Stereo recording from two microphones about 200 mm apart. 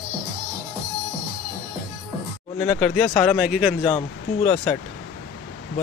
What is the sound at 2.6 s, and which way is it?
Speech, centre (ahead or behind).